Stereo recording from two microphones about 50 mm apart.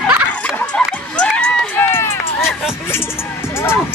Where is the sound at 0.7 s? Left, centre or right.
Left.